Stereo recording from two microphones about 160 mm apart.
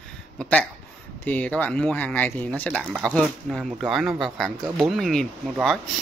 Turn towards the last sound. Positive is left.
turn(degrees=0)  # may be behind; listen again after turning